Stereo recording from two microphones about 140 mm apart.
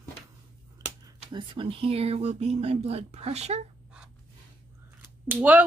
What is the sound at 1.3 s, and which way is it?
Speech, 35° right (ahead or behind).